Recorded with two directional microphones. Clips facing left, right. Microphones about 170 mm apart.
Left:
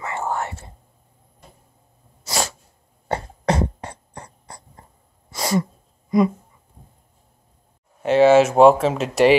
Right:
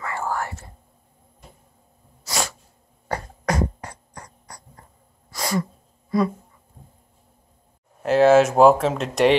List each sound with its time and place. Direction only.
0.0 s whispering: 20° left (ahead or behind)
2.2 s sneeze: 30° left (ahead or behind)
3.1 s cough: 25° left (ahead or behind)
5.3 s sneeze: 25° left (ahead or behind)
8.0 s speech: centre (ahead or behind)